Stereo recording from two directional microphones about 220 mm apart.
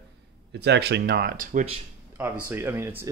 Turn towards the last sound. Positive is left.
turn(degrees=-10)  # may be behind; listen again after turning